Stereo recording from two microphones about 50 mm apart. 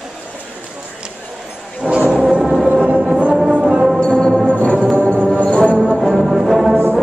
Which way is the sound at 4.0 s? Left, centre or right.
Centre.